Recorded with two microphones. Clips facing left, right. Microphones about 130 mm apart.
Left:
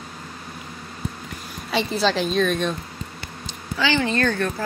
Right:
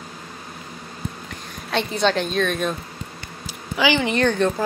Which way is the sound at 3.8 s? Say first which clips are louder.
Right 2 dB; 15° right (ahead or behind).